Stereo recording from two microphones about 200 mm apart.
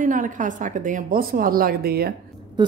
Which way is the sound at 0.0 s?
40° right (ahead or behind).